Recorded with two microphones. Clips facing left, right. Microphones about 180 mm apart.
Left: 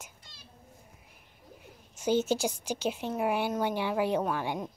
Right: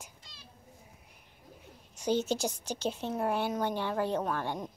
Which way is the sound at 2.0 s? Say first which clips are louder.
Left 3 dB; 5° left (ahead or behind).